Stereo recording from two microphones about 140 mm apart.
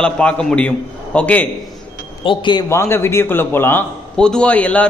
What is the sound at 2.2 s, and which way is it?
Speech, 35° left (ahead or behind).